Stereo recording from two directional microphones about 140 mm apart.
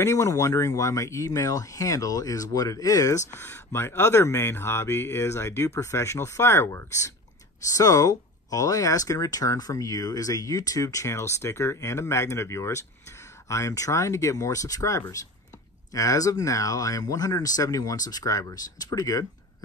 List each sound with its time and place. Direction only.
0.0 s speech: 20° left (ahead or behind)